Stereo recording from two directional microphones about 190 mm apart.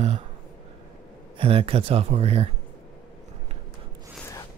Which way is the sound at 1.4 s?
30° right (ahead or behind).